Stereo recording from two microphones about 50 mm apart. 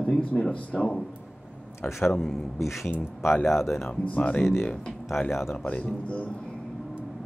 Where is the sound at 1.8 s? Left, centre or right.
Left.